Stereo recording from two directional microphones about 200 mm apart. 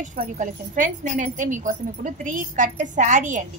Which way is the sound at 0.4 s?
40° right (ahead or behind).